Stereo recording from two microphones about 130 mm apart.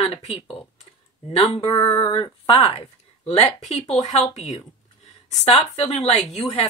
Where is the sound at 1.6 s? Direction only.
35° left (ahead or behind).